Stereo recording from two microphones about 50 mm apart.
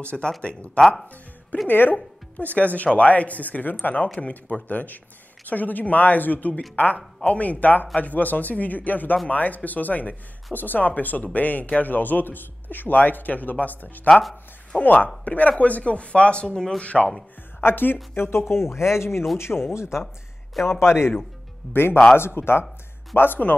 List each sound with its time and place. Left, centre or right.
0.0 s speech: left
0.7 s speech: centre
1.7 s speech: left
2.3 s a man's voice: left; by 16.8 s centre
16.8 s speech: left
17.6 s speech: left
21.6 s speech: centre
22.1 s speech: left
23.1 s speech: left